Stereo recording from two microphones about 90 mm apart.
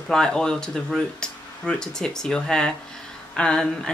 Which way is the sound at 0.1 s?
10° left (ahead or behind).